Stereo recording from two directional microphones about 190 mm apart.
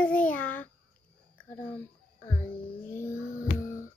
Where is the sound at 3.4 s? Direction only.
40° left (ahead or behind).